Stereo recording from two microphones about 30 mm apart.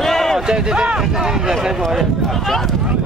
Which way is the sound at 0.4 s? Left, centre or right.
Right.